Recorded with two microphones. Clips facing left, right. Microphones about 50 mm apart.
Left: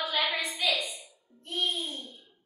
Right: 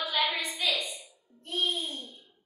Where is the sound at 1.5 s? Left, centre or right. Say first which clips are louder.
Right 1 dB; centre.